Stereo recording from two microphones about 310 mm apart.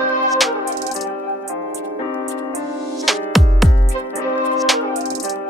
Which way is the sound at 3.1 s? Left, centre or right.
Centre.